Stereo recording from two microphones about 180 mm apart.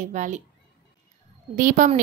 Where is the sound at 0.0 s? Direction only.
45° right (ahead or behind).